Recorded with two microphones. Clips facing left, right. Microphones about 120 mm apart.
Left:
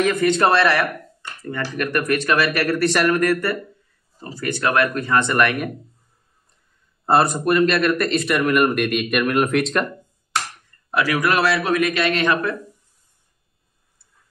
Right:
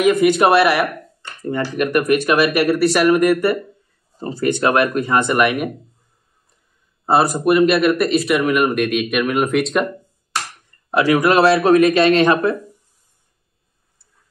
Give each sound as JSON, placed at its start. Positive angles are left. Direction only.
{"t": 0.0, "sound": "speech", "side_deg": -10}
{"t": 4.2, "sound": "speech", "side_deg": -30}
{"t": 7.1, "sound": "speech", "side_deg": -5}
{"t": 10.9, "sound": "speech", "side_deg": -25}